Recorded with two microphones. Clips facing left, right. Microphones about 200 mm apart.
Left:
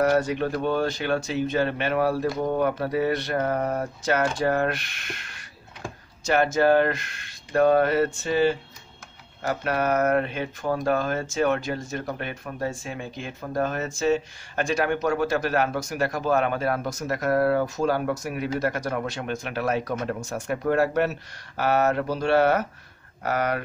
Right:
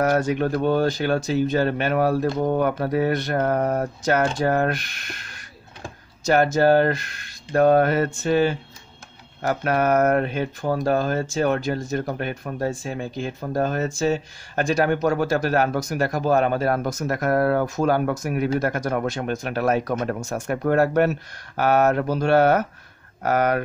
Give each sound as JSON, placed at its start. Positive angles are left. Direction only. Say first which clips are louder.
{"t": 0.1, "sound": "speech", "louder": "right 2 dB", "side_deg": -50}